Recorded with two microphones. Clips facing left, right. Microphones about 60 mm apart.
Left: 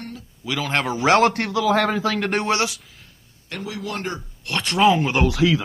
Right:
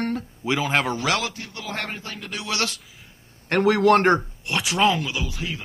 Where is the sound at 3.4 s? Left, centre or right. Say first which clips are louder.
Right 13 dB; right.